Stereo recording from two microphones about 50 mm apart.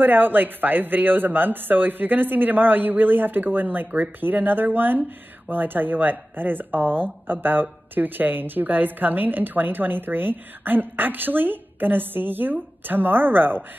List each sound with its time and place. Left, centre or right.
0.0 s a woman's voice: right